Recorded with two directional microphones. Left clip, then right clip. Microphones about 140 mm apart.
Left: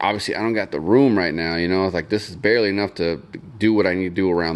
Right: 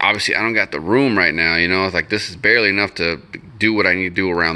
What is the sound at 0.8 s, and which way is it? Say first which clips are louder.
Speech: left 2 dB; 20° left (ahead or behind).